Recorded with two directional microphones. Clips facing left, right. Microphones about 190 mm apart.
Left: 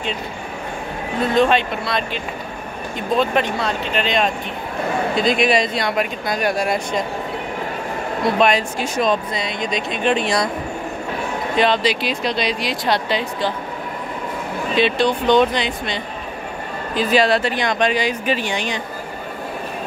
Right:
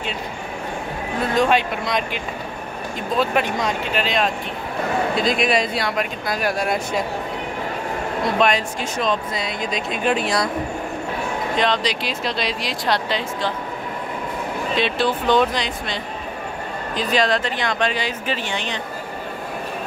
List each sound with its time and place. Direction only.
1.3 s speech: 10° right (ahead or behind)
8.4 s speech: 5° left (ahead or behind)
9.3 s speech: 5° right (ahead or behind)
11.5 s speech: 5° left (ahead or behind)
14.8 s speech: 5° right (ahead or behind); by 18.8 s 15° left (ahead or behind)